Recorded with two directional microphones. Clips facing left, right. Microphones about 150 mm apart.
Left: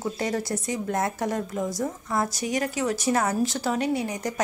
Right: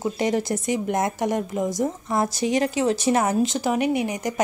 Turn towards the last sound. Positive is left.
turn(degrees=-20)  # may be behind; listen again after turning